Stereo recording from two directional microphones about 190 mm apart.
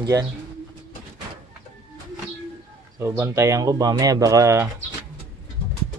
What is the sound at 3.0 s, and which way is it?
Speech, 15° right (ahead or behind).